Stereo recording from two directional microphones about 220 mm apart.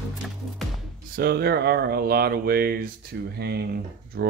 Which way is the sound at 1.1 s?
45° right (ahead or behind).